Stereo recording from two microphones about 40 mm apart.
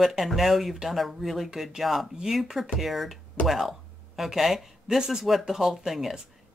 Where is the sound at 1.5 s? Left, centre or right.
Centre.